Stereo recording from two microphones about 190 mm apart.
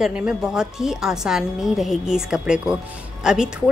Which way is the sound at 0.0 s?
5° right (ahead or behind).